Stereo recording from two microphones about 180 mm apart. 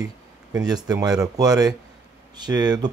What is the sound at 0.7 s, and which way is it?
Speech, 20° right (ahead or behind).